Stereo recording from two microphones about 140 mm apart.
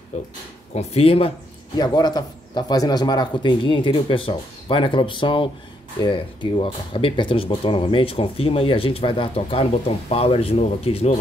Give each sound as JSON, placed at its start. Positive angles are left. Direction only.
{"t": 0.1, "sound": "speech", "side_deg": 55}
{"t": 1.8, "sound": "speech", "side_deg": 30}